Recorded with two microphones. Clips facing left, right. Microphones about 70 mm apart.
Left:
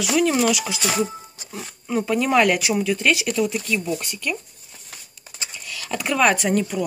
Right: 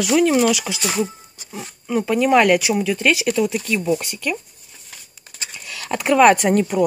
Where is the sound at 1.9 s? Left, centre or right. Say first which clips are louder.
Right 3 dB; centre.